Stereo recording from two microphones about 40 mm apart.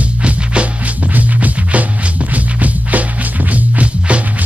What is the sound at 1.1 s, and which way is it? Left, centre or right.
Music, right.